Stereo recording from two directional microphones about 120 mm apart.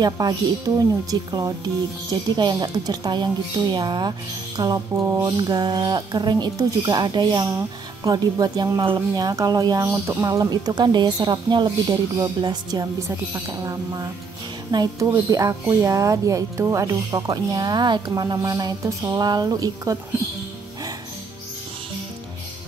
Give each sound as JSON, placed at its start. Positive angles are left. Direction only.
{"t": 0.0, "sound": "speech", "side_deg": -35}